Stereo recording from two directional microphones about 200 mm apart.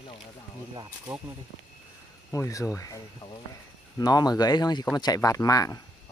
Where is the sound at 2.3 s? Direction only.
15° left (ahead or behind).